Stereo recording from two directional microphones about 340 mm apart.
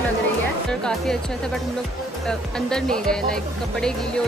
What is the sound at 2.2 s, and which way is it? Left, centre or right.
Speech, centre.